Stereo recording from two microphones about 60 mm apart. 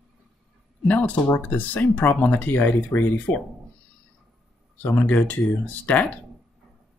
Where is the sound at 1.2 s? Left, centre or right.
Left.